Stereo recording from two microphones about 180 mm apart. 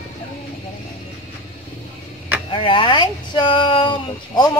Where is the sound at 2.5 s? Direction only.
30° left (ahead or behind).